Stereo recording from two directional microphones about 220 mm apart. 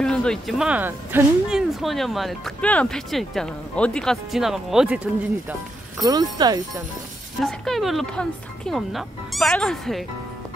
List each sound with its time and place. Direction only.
0.0 s speech: 5° left (ahead or behind)
5.5 s speech: 15° right (ahead or behind)
7.3 s speech: centre (ahead or behind)